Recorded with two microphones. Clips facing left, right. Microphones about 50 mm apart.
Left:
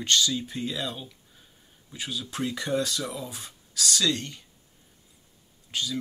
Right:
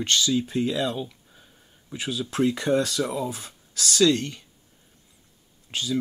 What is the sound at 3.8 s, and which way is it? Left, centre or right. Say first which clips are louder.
Speech: right 6 dB; right.